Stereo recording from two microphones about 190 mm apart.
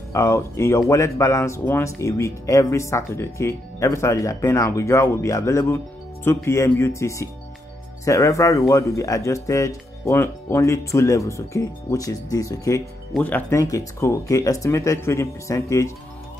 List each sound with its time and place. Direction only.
0.1 s speech: 15° left (ahead or behind)